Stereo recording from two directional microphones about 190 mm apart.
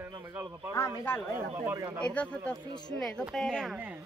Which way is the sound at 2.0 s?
5° left (ahead or behind).